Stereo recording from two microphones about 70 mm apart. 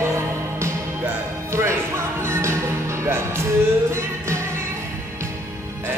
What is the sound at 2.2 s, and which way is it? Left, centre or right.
Music, right.